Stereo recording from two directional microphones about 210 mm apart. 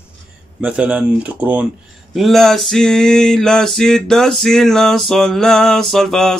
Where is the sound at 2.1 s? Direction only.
Centre (ahead or behind).